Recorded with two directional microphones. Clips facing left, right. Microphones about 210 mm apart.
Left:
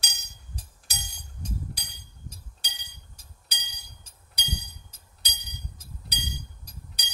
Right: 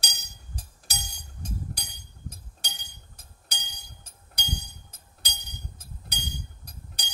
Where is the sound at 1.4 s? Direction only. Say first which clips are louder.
Even; 45° right (ahead or behind).